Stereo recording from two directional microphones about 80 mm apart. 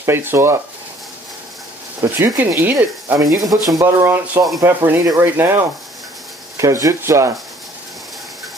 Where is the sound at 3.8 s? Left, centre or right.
Right.